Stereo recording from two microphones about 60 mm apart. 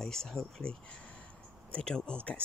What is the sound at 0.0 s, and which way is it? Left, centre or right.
Speech, centre.